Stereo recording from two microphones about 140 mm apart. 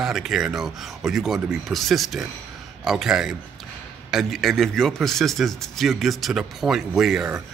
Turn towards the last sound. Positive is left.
turn(degrees=-5)  # may be behind; listen again after turning